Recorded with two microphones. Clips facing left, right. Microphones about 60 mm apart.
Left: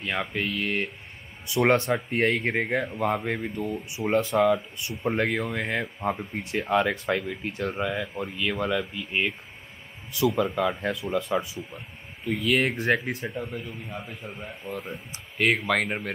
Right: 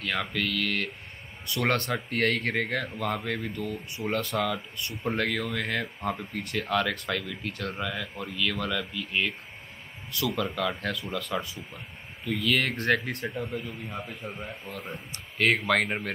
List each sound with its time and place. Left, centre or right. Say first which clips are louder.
0.0 s speech: left 1 dB; centre
4.3 s speech: left 7 dB; centre